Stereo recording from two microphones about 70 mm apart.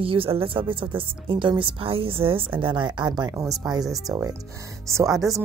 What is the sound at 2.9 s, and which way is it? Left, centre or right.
Speech, right.